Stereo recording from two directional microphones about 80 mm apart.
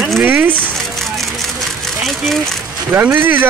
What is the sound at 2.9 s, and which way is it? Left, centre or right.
Speech, right.